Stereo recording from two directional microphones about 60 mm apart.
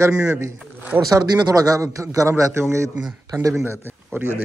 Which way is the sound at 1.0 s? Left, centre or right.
Right.